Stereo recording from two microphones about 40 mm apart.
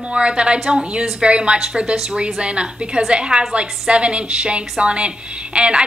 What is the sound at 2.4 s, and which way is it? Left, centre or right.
A woman's voice, right.